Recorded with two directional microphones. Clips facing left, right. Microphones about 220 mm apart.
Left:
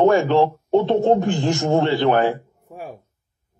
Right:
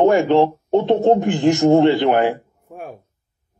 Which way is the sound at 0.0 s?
15° right (ahead or behind).